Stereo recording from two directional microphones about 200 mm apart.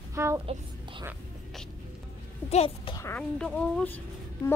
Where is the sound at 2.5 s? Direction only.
25° left (ahead or behind).